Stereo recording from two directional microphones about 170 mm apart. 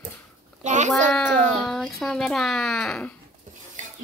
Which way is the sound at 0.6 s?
45° right (ahead or behind).